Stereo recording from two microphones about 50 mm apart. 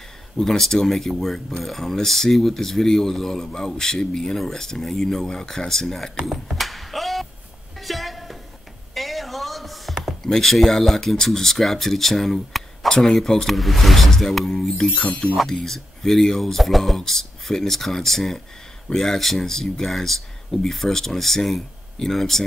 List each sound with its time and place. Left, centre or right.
0.4 s speech: centre
7.8 s a sound: centre
8.9 s speech: centre
15.0 s speech: centre
15.3 s speech: centre